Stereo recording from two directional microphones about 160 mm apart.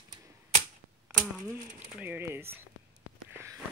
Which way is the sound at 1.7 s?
10° right (ahead or behind).